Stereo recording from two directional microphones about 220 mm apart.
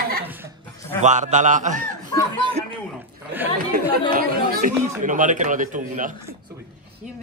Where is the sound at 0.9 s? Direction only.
35° right (ahead or behind).